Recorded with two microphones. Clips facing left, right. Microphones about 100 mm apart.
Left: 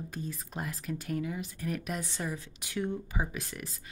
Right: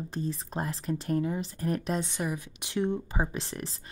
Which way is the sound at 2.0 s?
20° right (ahead or behind).